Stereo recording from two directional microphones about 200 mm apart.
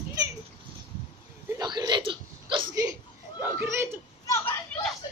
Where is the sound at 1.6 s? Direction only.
20° right (ahead or behind).